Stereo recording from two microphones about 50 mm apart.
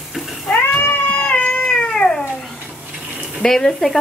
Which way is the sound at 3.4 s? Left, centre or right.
Centre.